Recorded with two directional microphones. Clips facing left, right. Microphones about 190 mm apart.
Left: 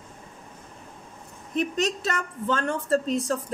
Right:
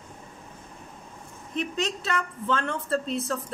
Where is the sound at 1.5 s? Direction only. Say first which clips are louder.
Left 4 dB; 40° left (ahead or behind).